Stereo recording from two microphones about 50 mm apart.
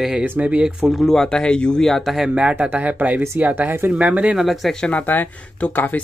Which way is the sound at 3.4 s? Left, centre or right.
Right.